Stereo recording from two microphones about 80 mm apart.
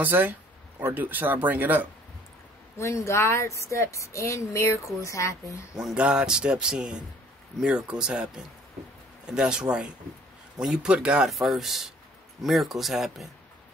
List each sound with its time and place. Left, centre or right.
0.0 s speech: right
2.8 s a woman's voice: left
5.8 s a man's voice: centre
11.2 s speech: centre